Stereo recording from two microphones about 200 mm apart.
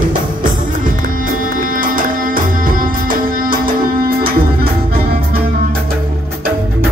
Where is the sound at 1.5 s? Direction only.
45° right (ahead or behind).